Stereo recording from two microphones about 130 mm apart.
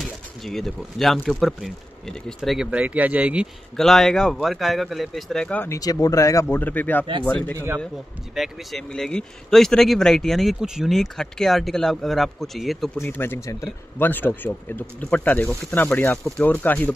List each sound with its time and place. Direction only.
0.0 s speech: centre (ahead or behind)
3.7 s speech: 5° left (ahead or behind)
5.7 s speech: 30° left (ahead or behind); by 13.0 s centre (ahead or behind)
13.0 s speech: 15° left (ahead or behind)